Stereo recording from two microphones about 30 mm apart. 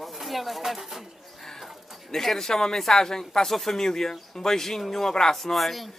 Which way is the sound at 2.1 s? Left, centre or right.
Centre.